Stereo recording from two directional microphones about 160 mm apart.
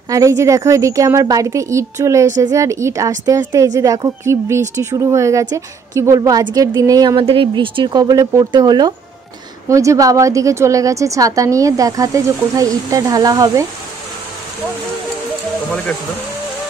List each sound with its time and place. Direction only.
0.1 s a woman's voice: 20° right (ahead or behind)